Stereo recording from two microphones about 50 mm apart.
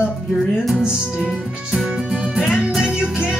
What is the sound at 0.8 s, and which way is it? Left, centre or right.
Music, centre.